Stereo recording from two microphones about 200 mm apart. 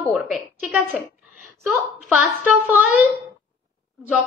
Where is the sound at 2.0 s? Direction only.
Centre (ahead or behind).